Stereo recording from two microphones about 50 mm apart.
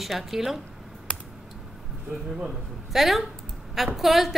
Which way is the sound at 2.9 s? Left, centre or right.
Centre.